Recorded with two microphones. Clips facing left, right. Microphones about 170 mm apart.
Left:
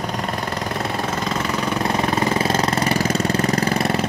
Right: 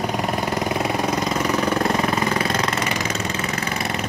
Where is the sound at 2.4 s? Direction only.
30° left (ahead or behind).